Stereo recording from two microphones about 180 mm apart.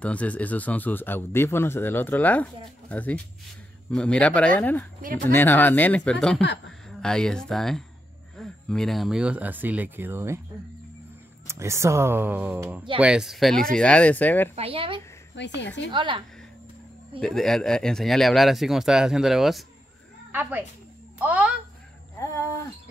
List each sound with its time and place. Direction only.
0.0 s speech: 5° left (ahead or behind); by 10.4 s 15° right (ahead or behind)
11.4 s speech: 15° right (ahead or behind); by 14.5 s 10° left (ahead or behind)
14.5 s a woman's voice: 30° right (ahead or behind)
15.3 s speech: 75° left (ahead or behind)
15.9 s a woman's voice: 25° right (ahead or behind)
17.2 s a child's voice: centre (ahead or behind)
22.2 s a sound: 15° left (ahead or behind)